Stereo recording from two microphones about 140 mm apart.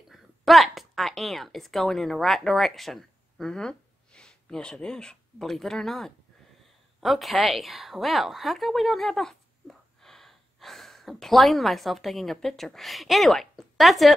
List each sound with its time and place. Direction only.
0.1 s a woman's voice: centre (ahead or behind)